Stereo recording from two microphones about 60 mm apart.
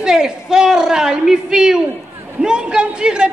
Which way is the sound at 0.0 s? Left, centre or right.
Centre.